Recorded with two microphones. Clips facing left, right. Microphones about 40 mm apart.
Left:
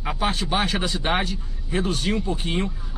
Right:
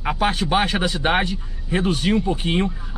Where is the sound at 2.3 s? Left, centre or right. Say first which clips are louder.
Right 4 dB; right.